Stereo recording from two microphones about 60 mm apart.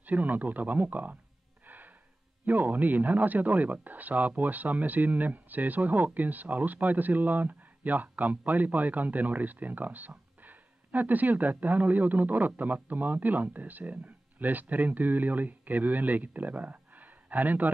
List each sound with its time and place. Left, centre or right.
0.0 s speech: right
1.7 s a sound: right
2.4 s speech: right